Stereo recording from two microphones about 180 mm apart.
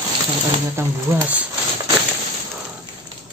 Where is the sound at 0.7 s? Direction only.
15° right (ahead or behind).